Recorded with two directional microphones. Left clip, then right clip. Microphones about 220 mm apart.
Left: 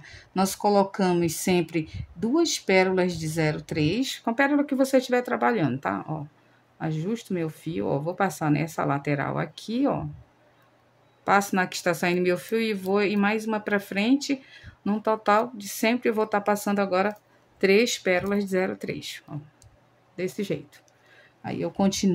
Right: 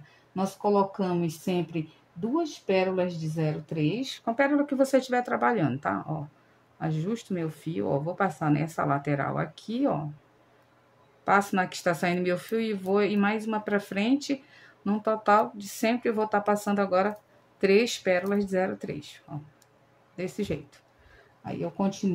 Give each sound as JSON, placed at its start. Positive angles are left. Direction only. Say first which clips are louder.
{"t": 0.3, "sound": "speech", "louder": "left 4 dB", "side_deg": 40}
{"t": 11.2, "sound": "speech", "louder": "left 2 dB", "side_deg": 15}
{"t": 21.5, "sound": "speech", "louder": "left 4 dB", "side_deg": 30}